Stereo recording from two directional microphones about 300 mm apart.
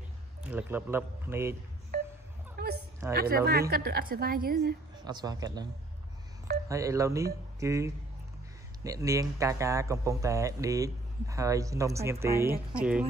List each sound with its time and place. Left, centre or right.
0.4 s speech: centre
2.5 s a sound: right
3.1 s a woman's voice: right
5.0 s speech: centre
6.7 s speech: centre